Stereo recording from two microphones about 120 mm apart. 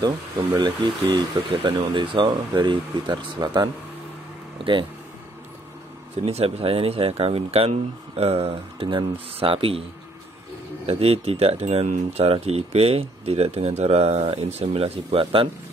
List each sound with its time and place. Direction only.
0.6 s speech: 35° right (ahead or behind)
6.2 s speech: 55° right (ahead or behind)
10.9 s speech: 55° right (ahead or behind)